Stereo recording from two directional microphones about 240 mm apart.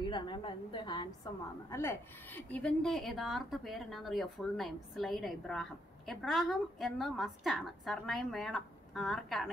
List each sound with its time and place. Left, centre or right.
0.1 s a woman's voice: centre